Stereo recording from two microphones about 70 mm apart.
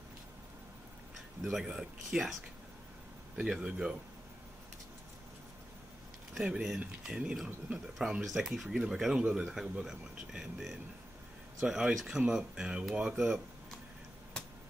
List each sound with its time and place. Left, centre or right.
1.1 s speech: centre
3.3 s speech: centre
6.3 s speech: centre